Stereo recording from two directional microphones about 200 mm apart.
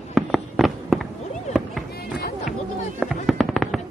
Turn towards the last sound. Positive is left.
turn(degrees=0)  # may be behind; listen again after turning